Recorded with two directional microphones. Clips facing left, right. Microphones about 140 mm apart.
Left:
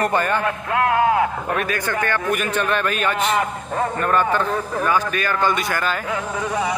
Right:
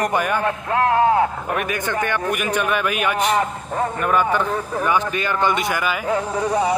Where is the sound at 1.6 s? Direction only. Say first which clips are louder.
Right 2 dB; 15° right (ahead or behind).